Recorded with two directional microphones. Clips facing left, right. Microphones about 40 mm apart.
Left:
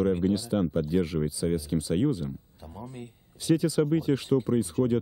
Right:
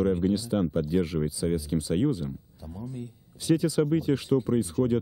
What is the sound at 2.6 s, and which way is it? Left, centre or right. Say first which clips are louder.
Speech: right 3 dB; left.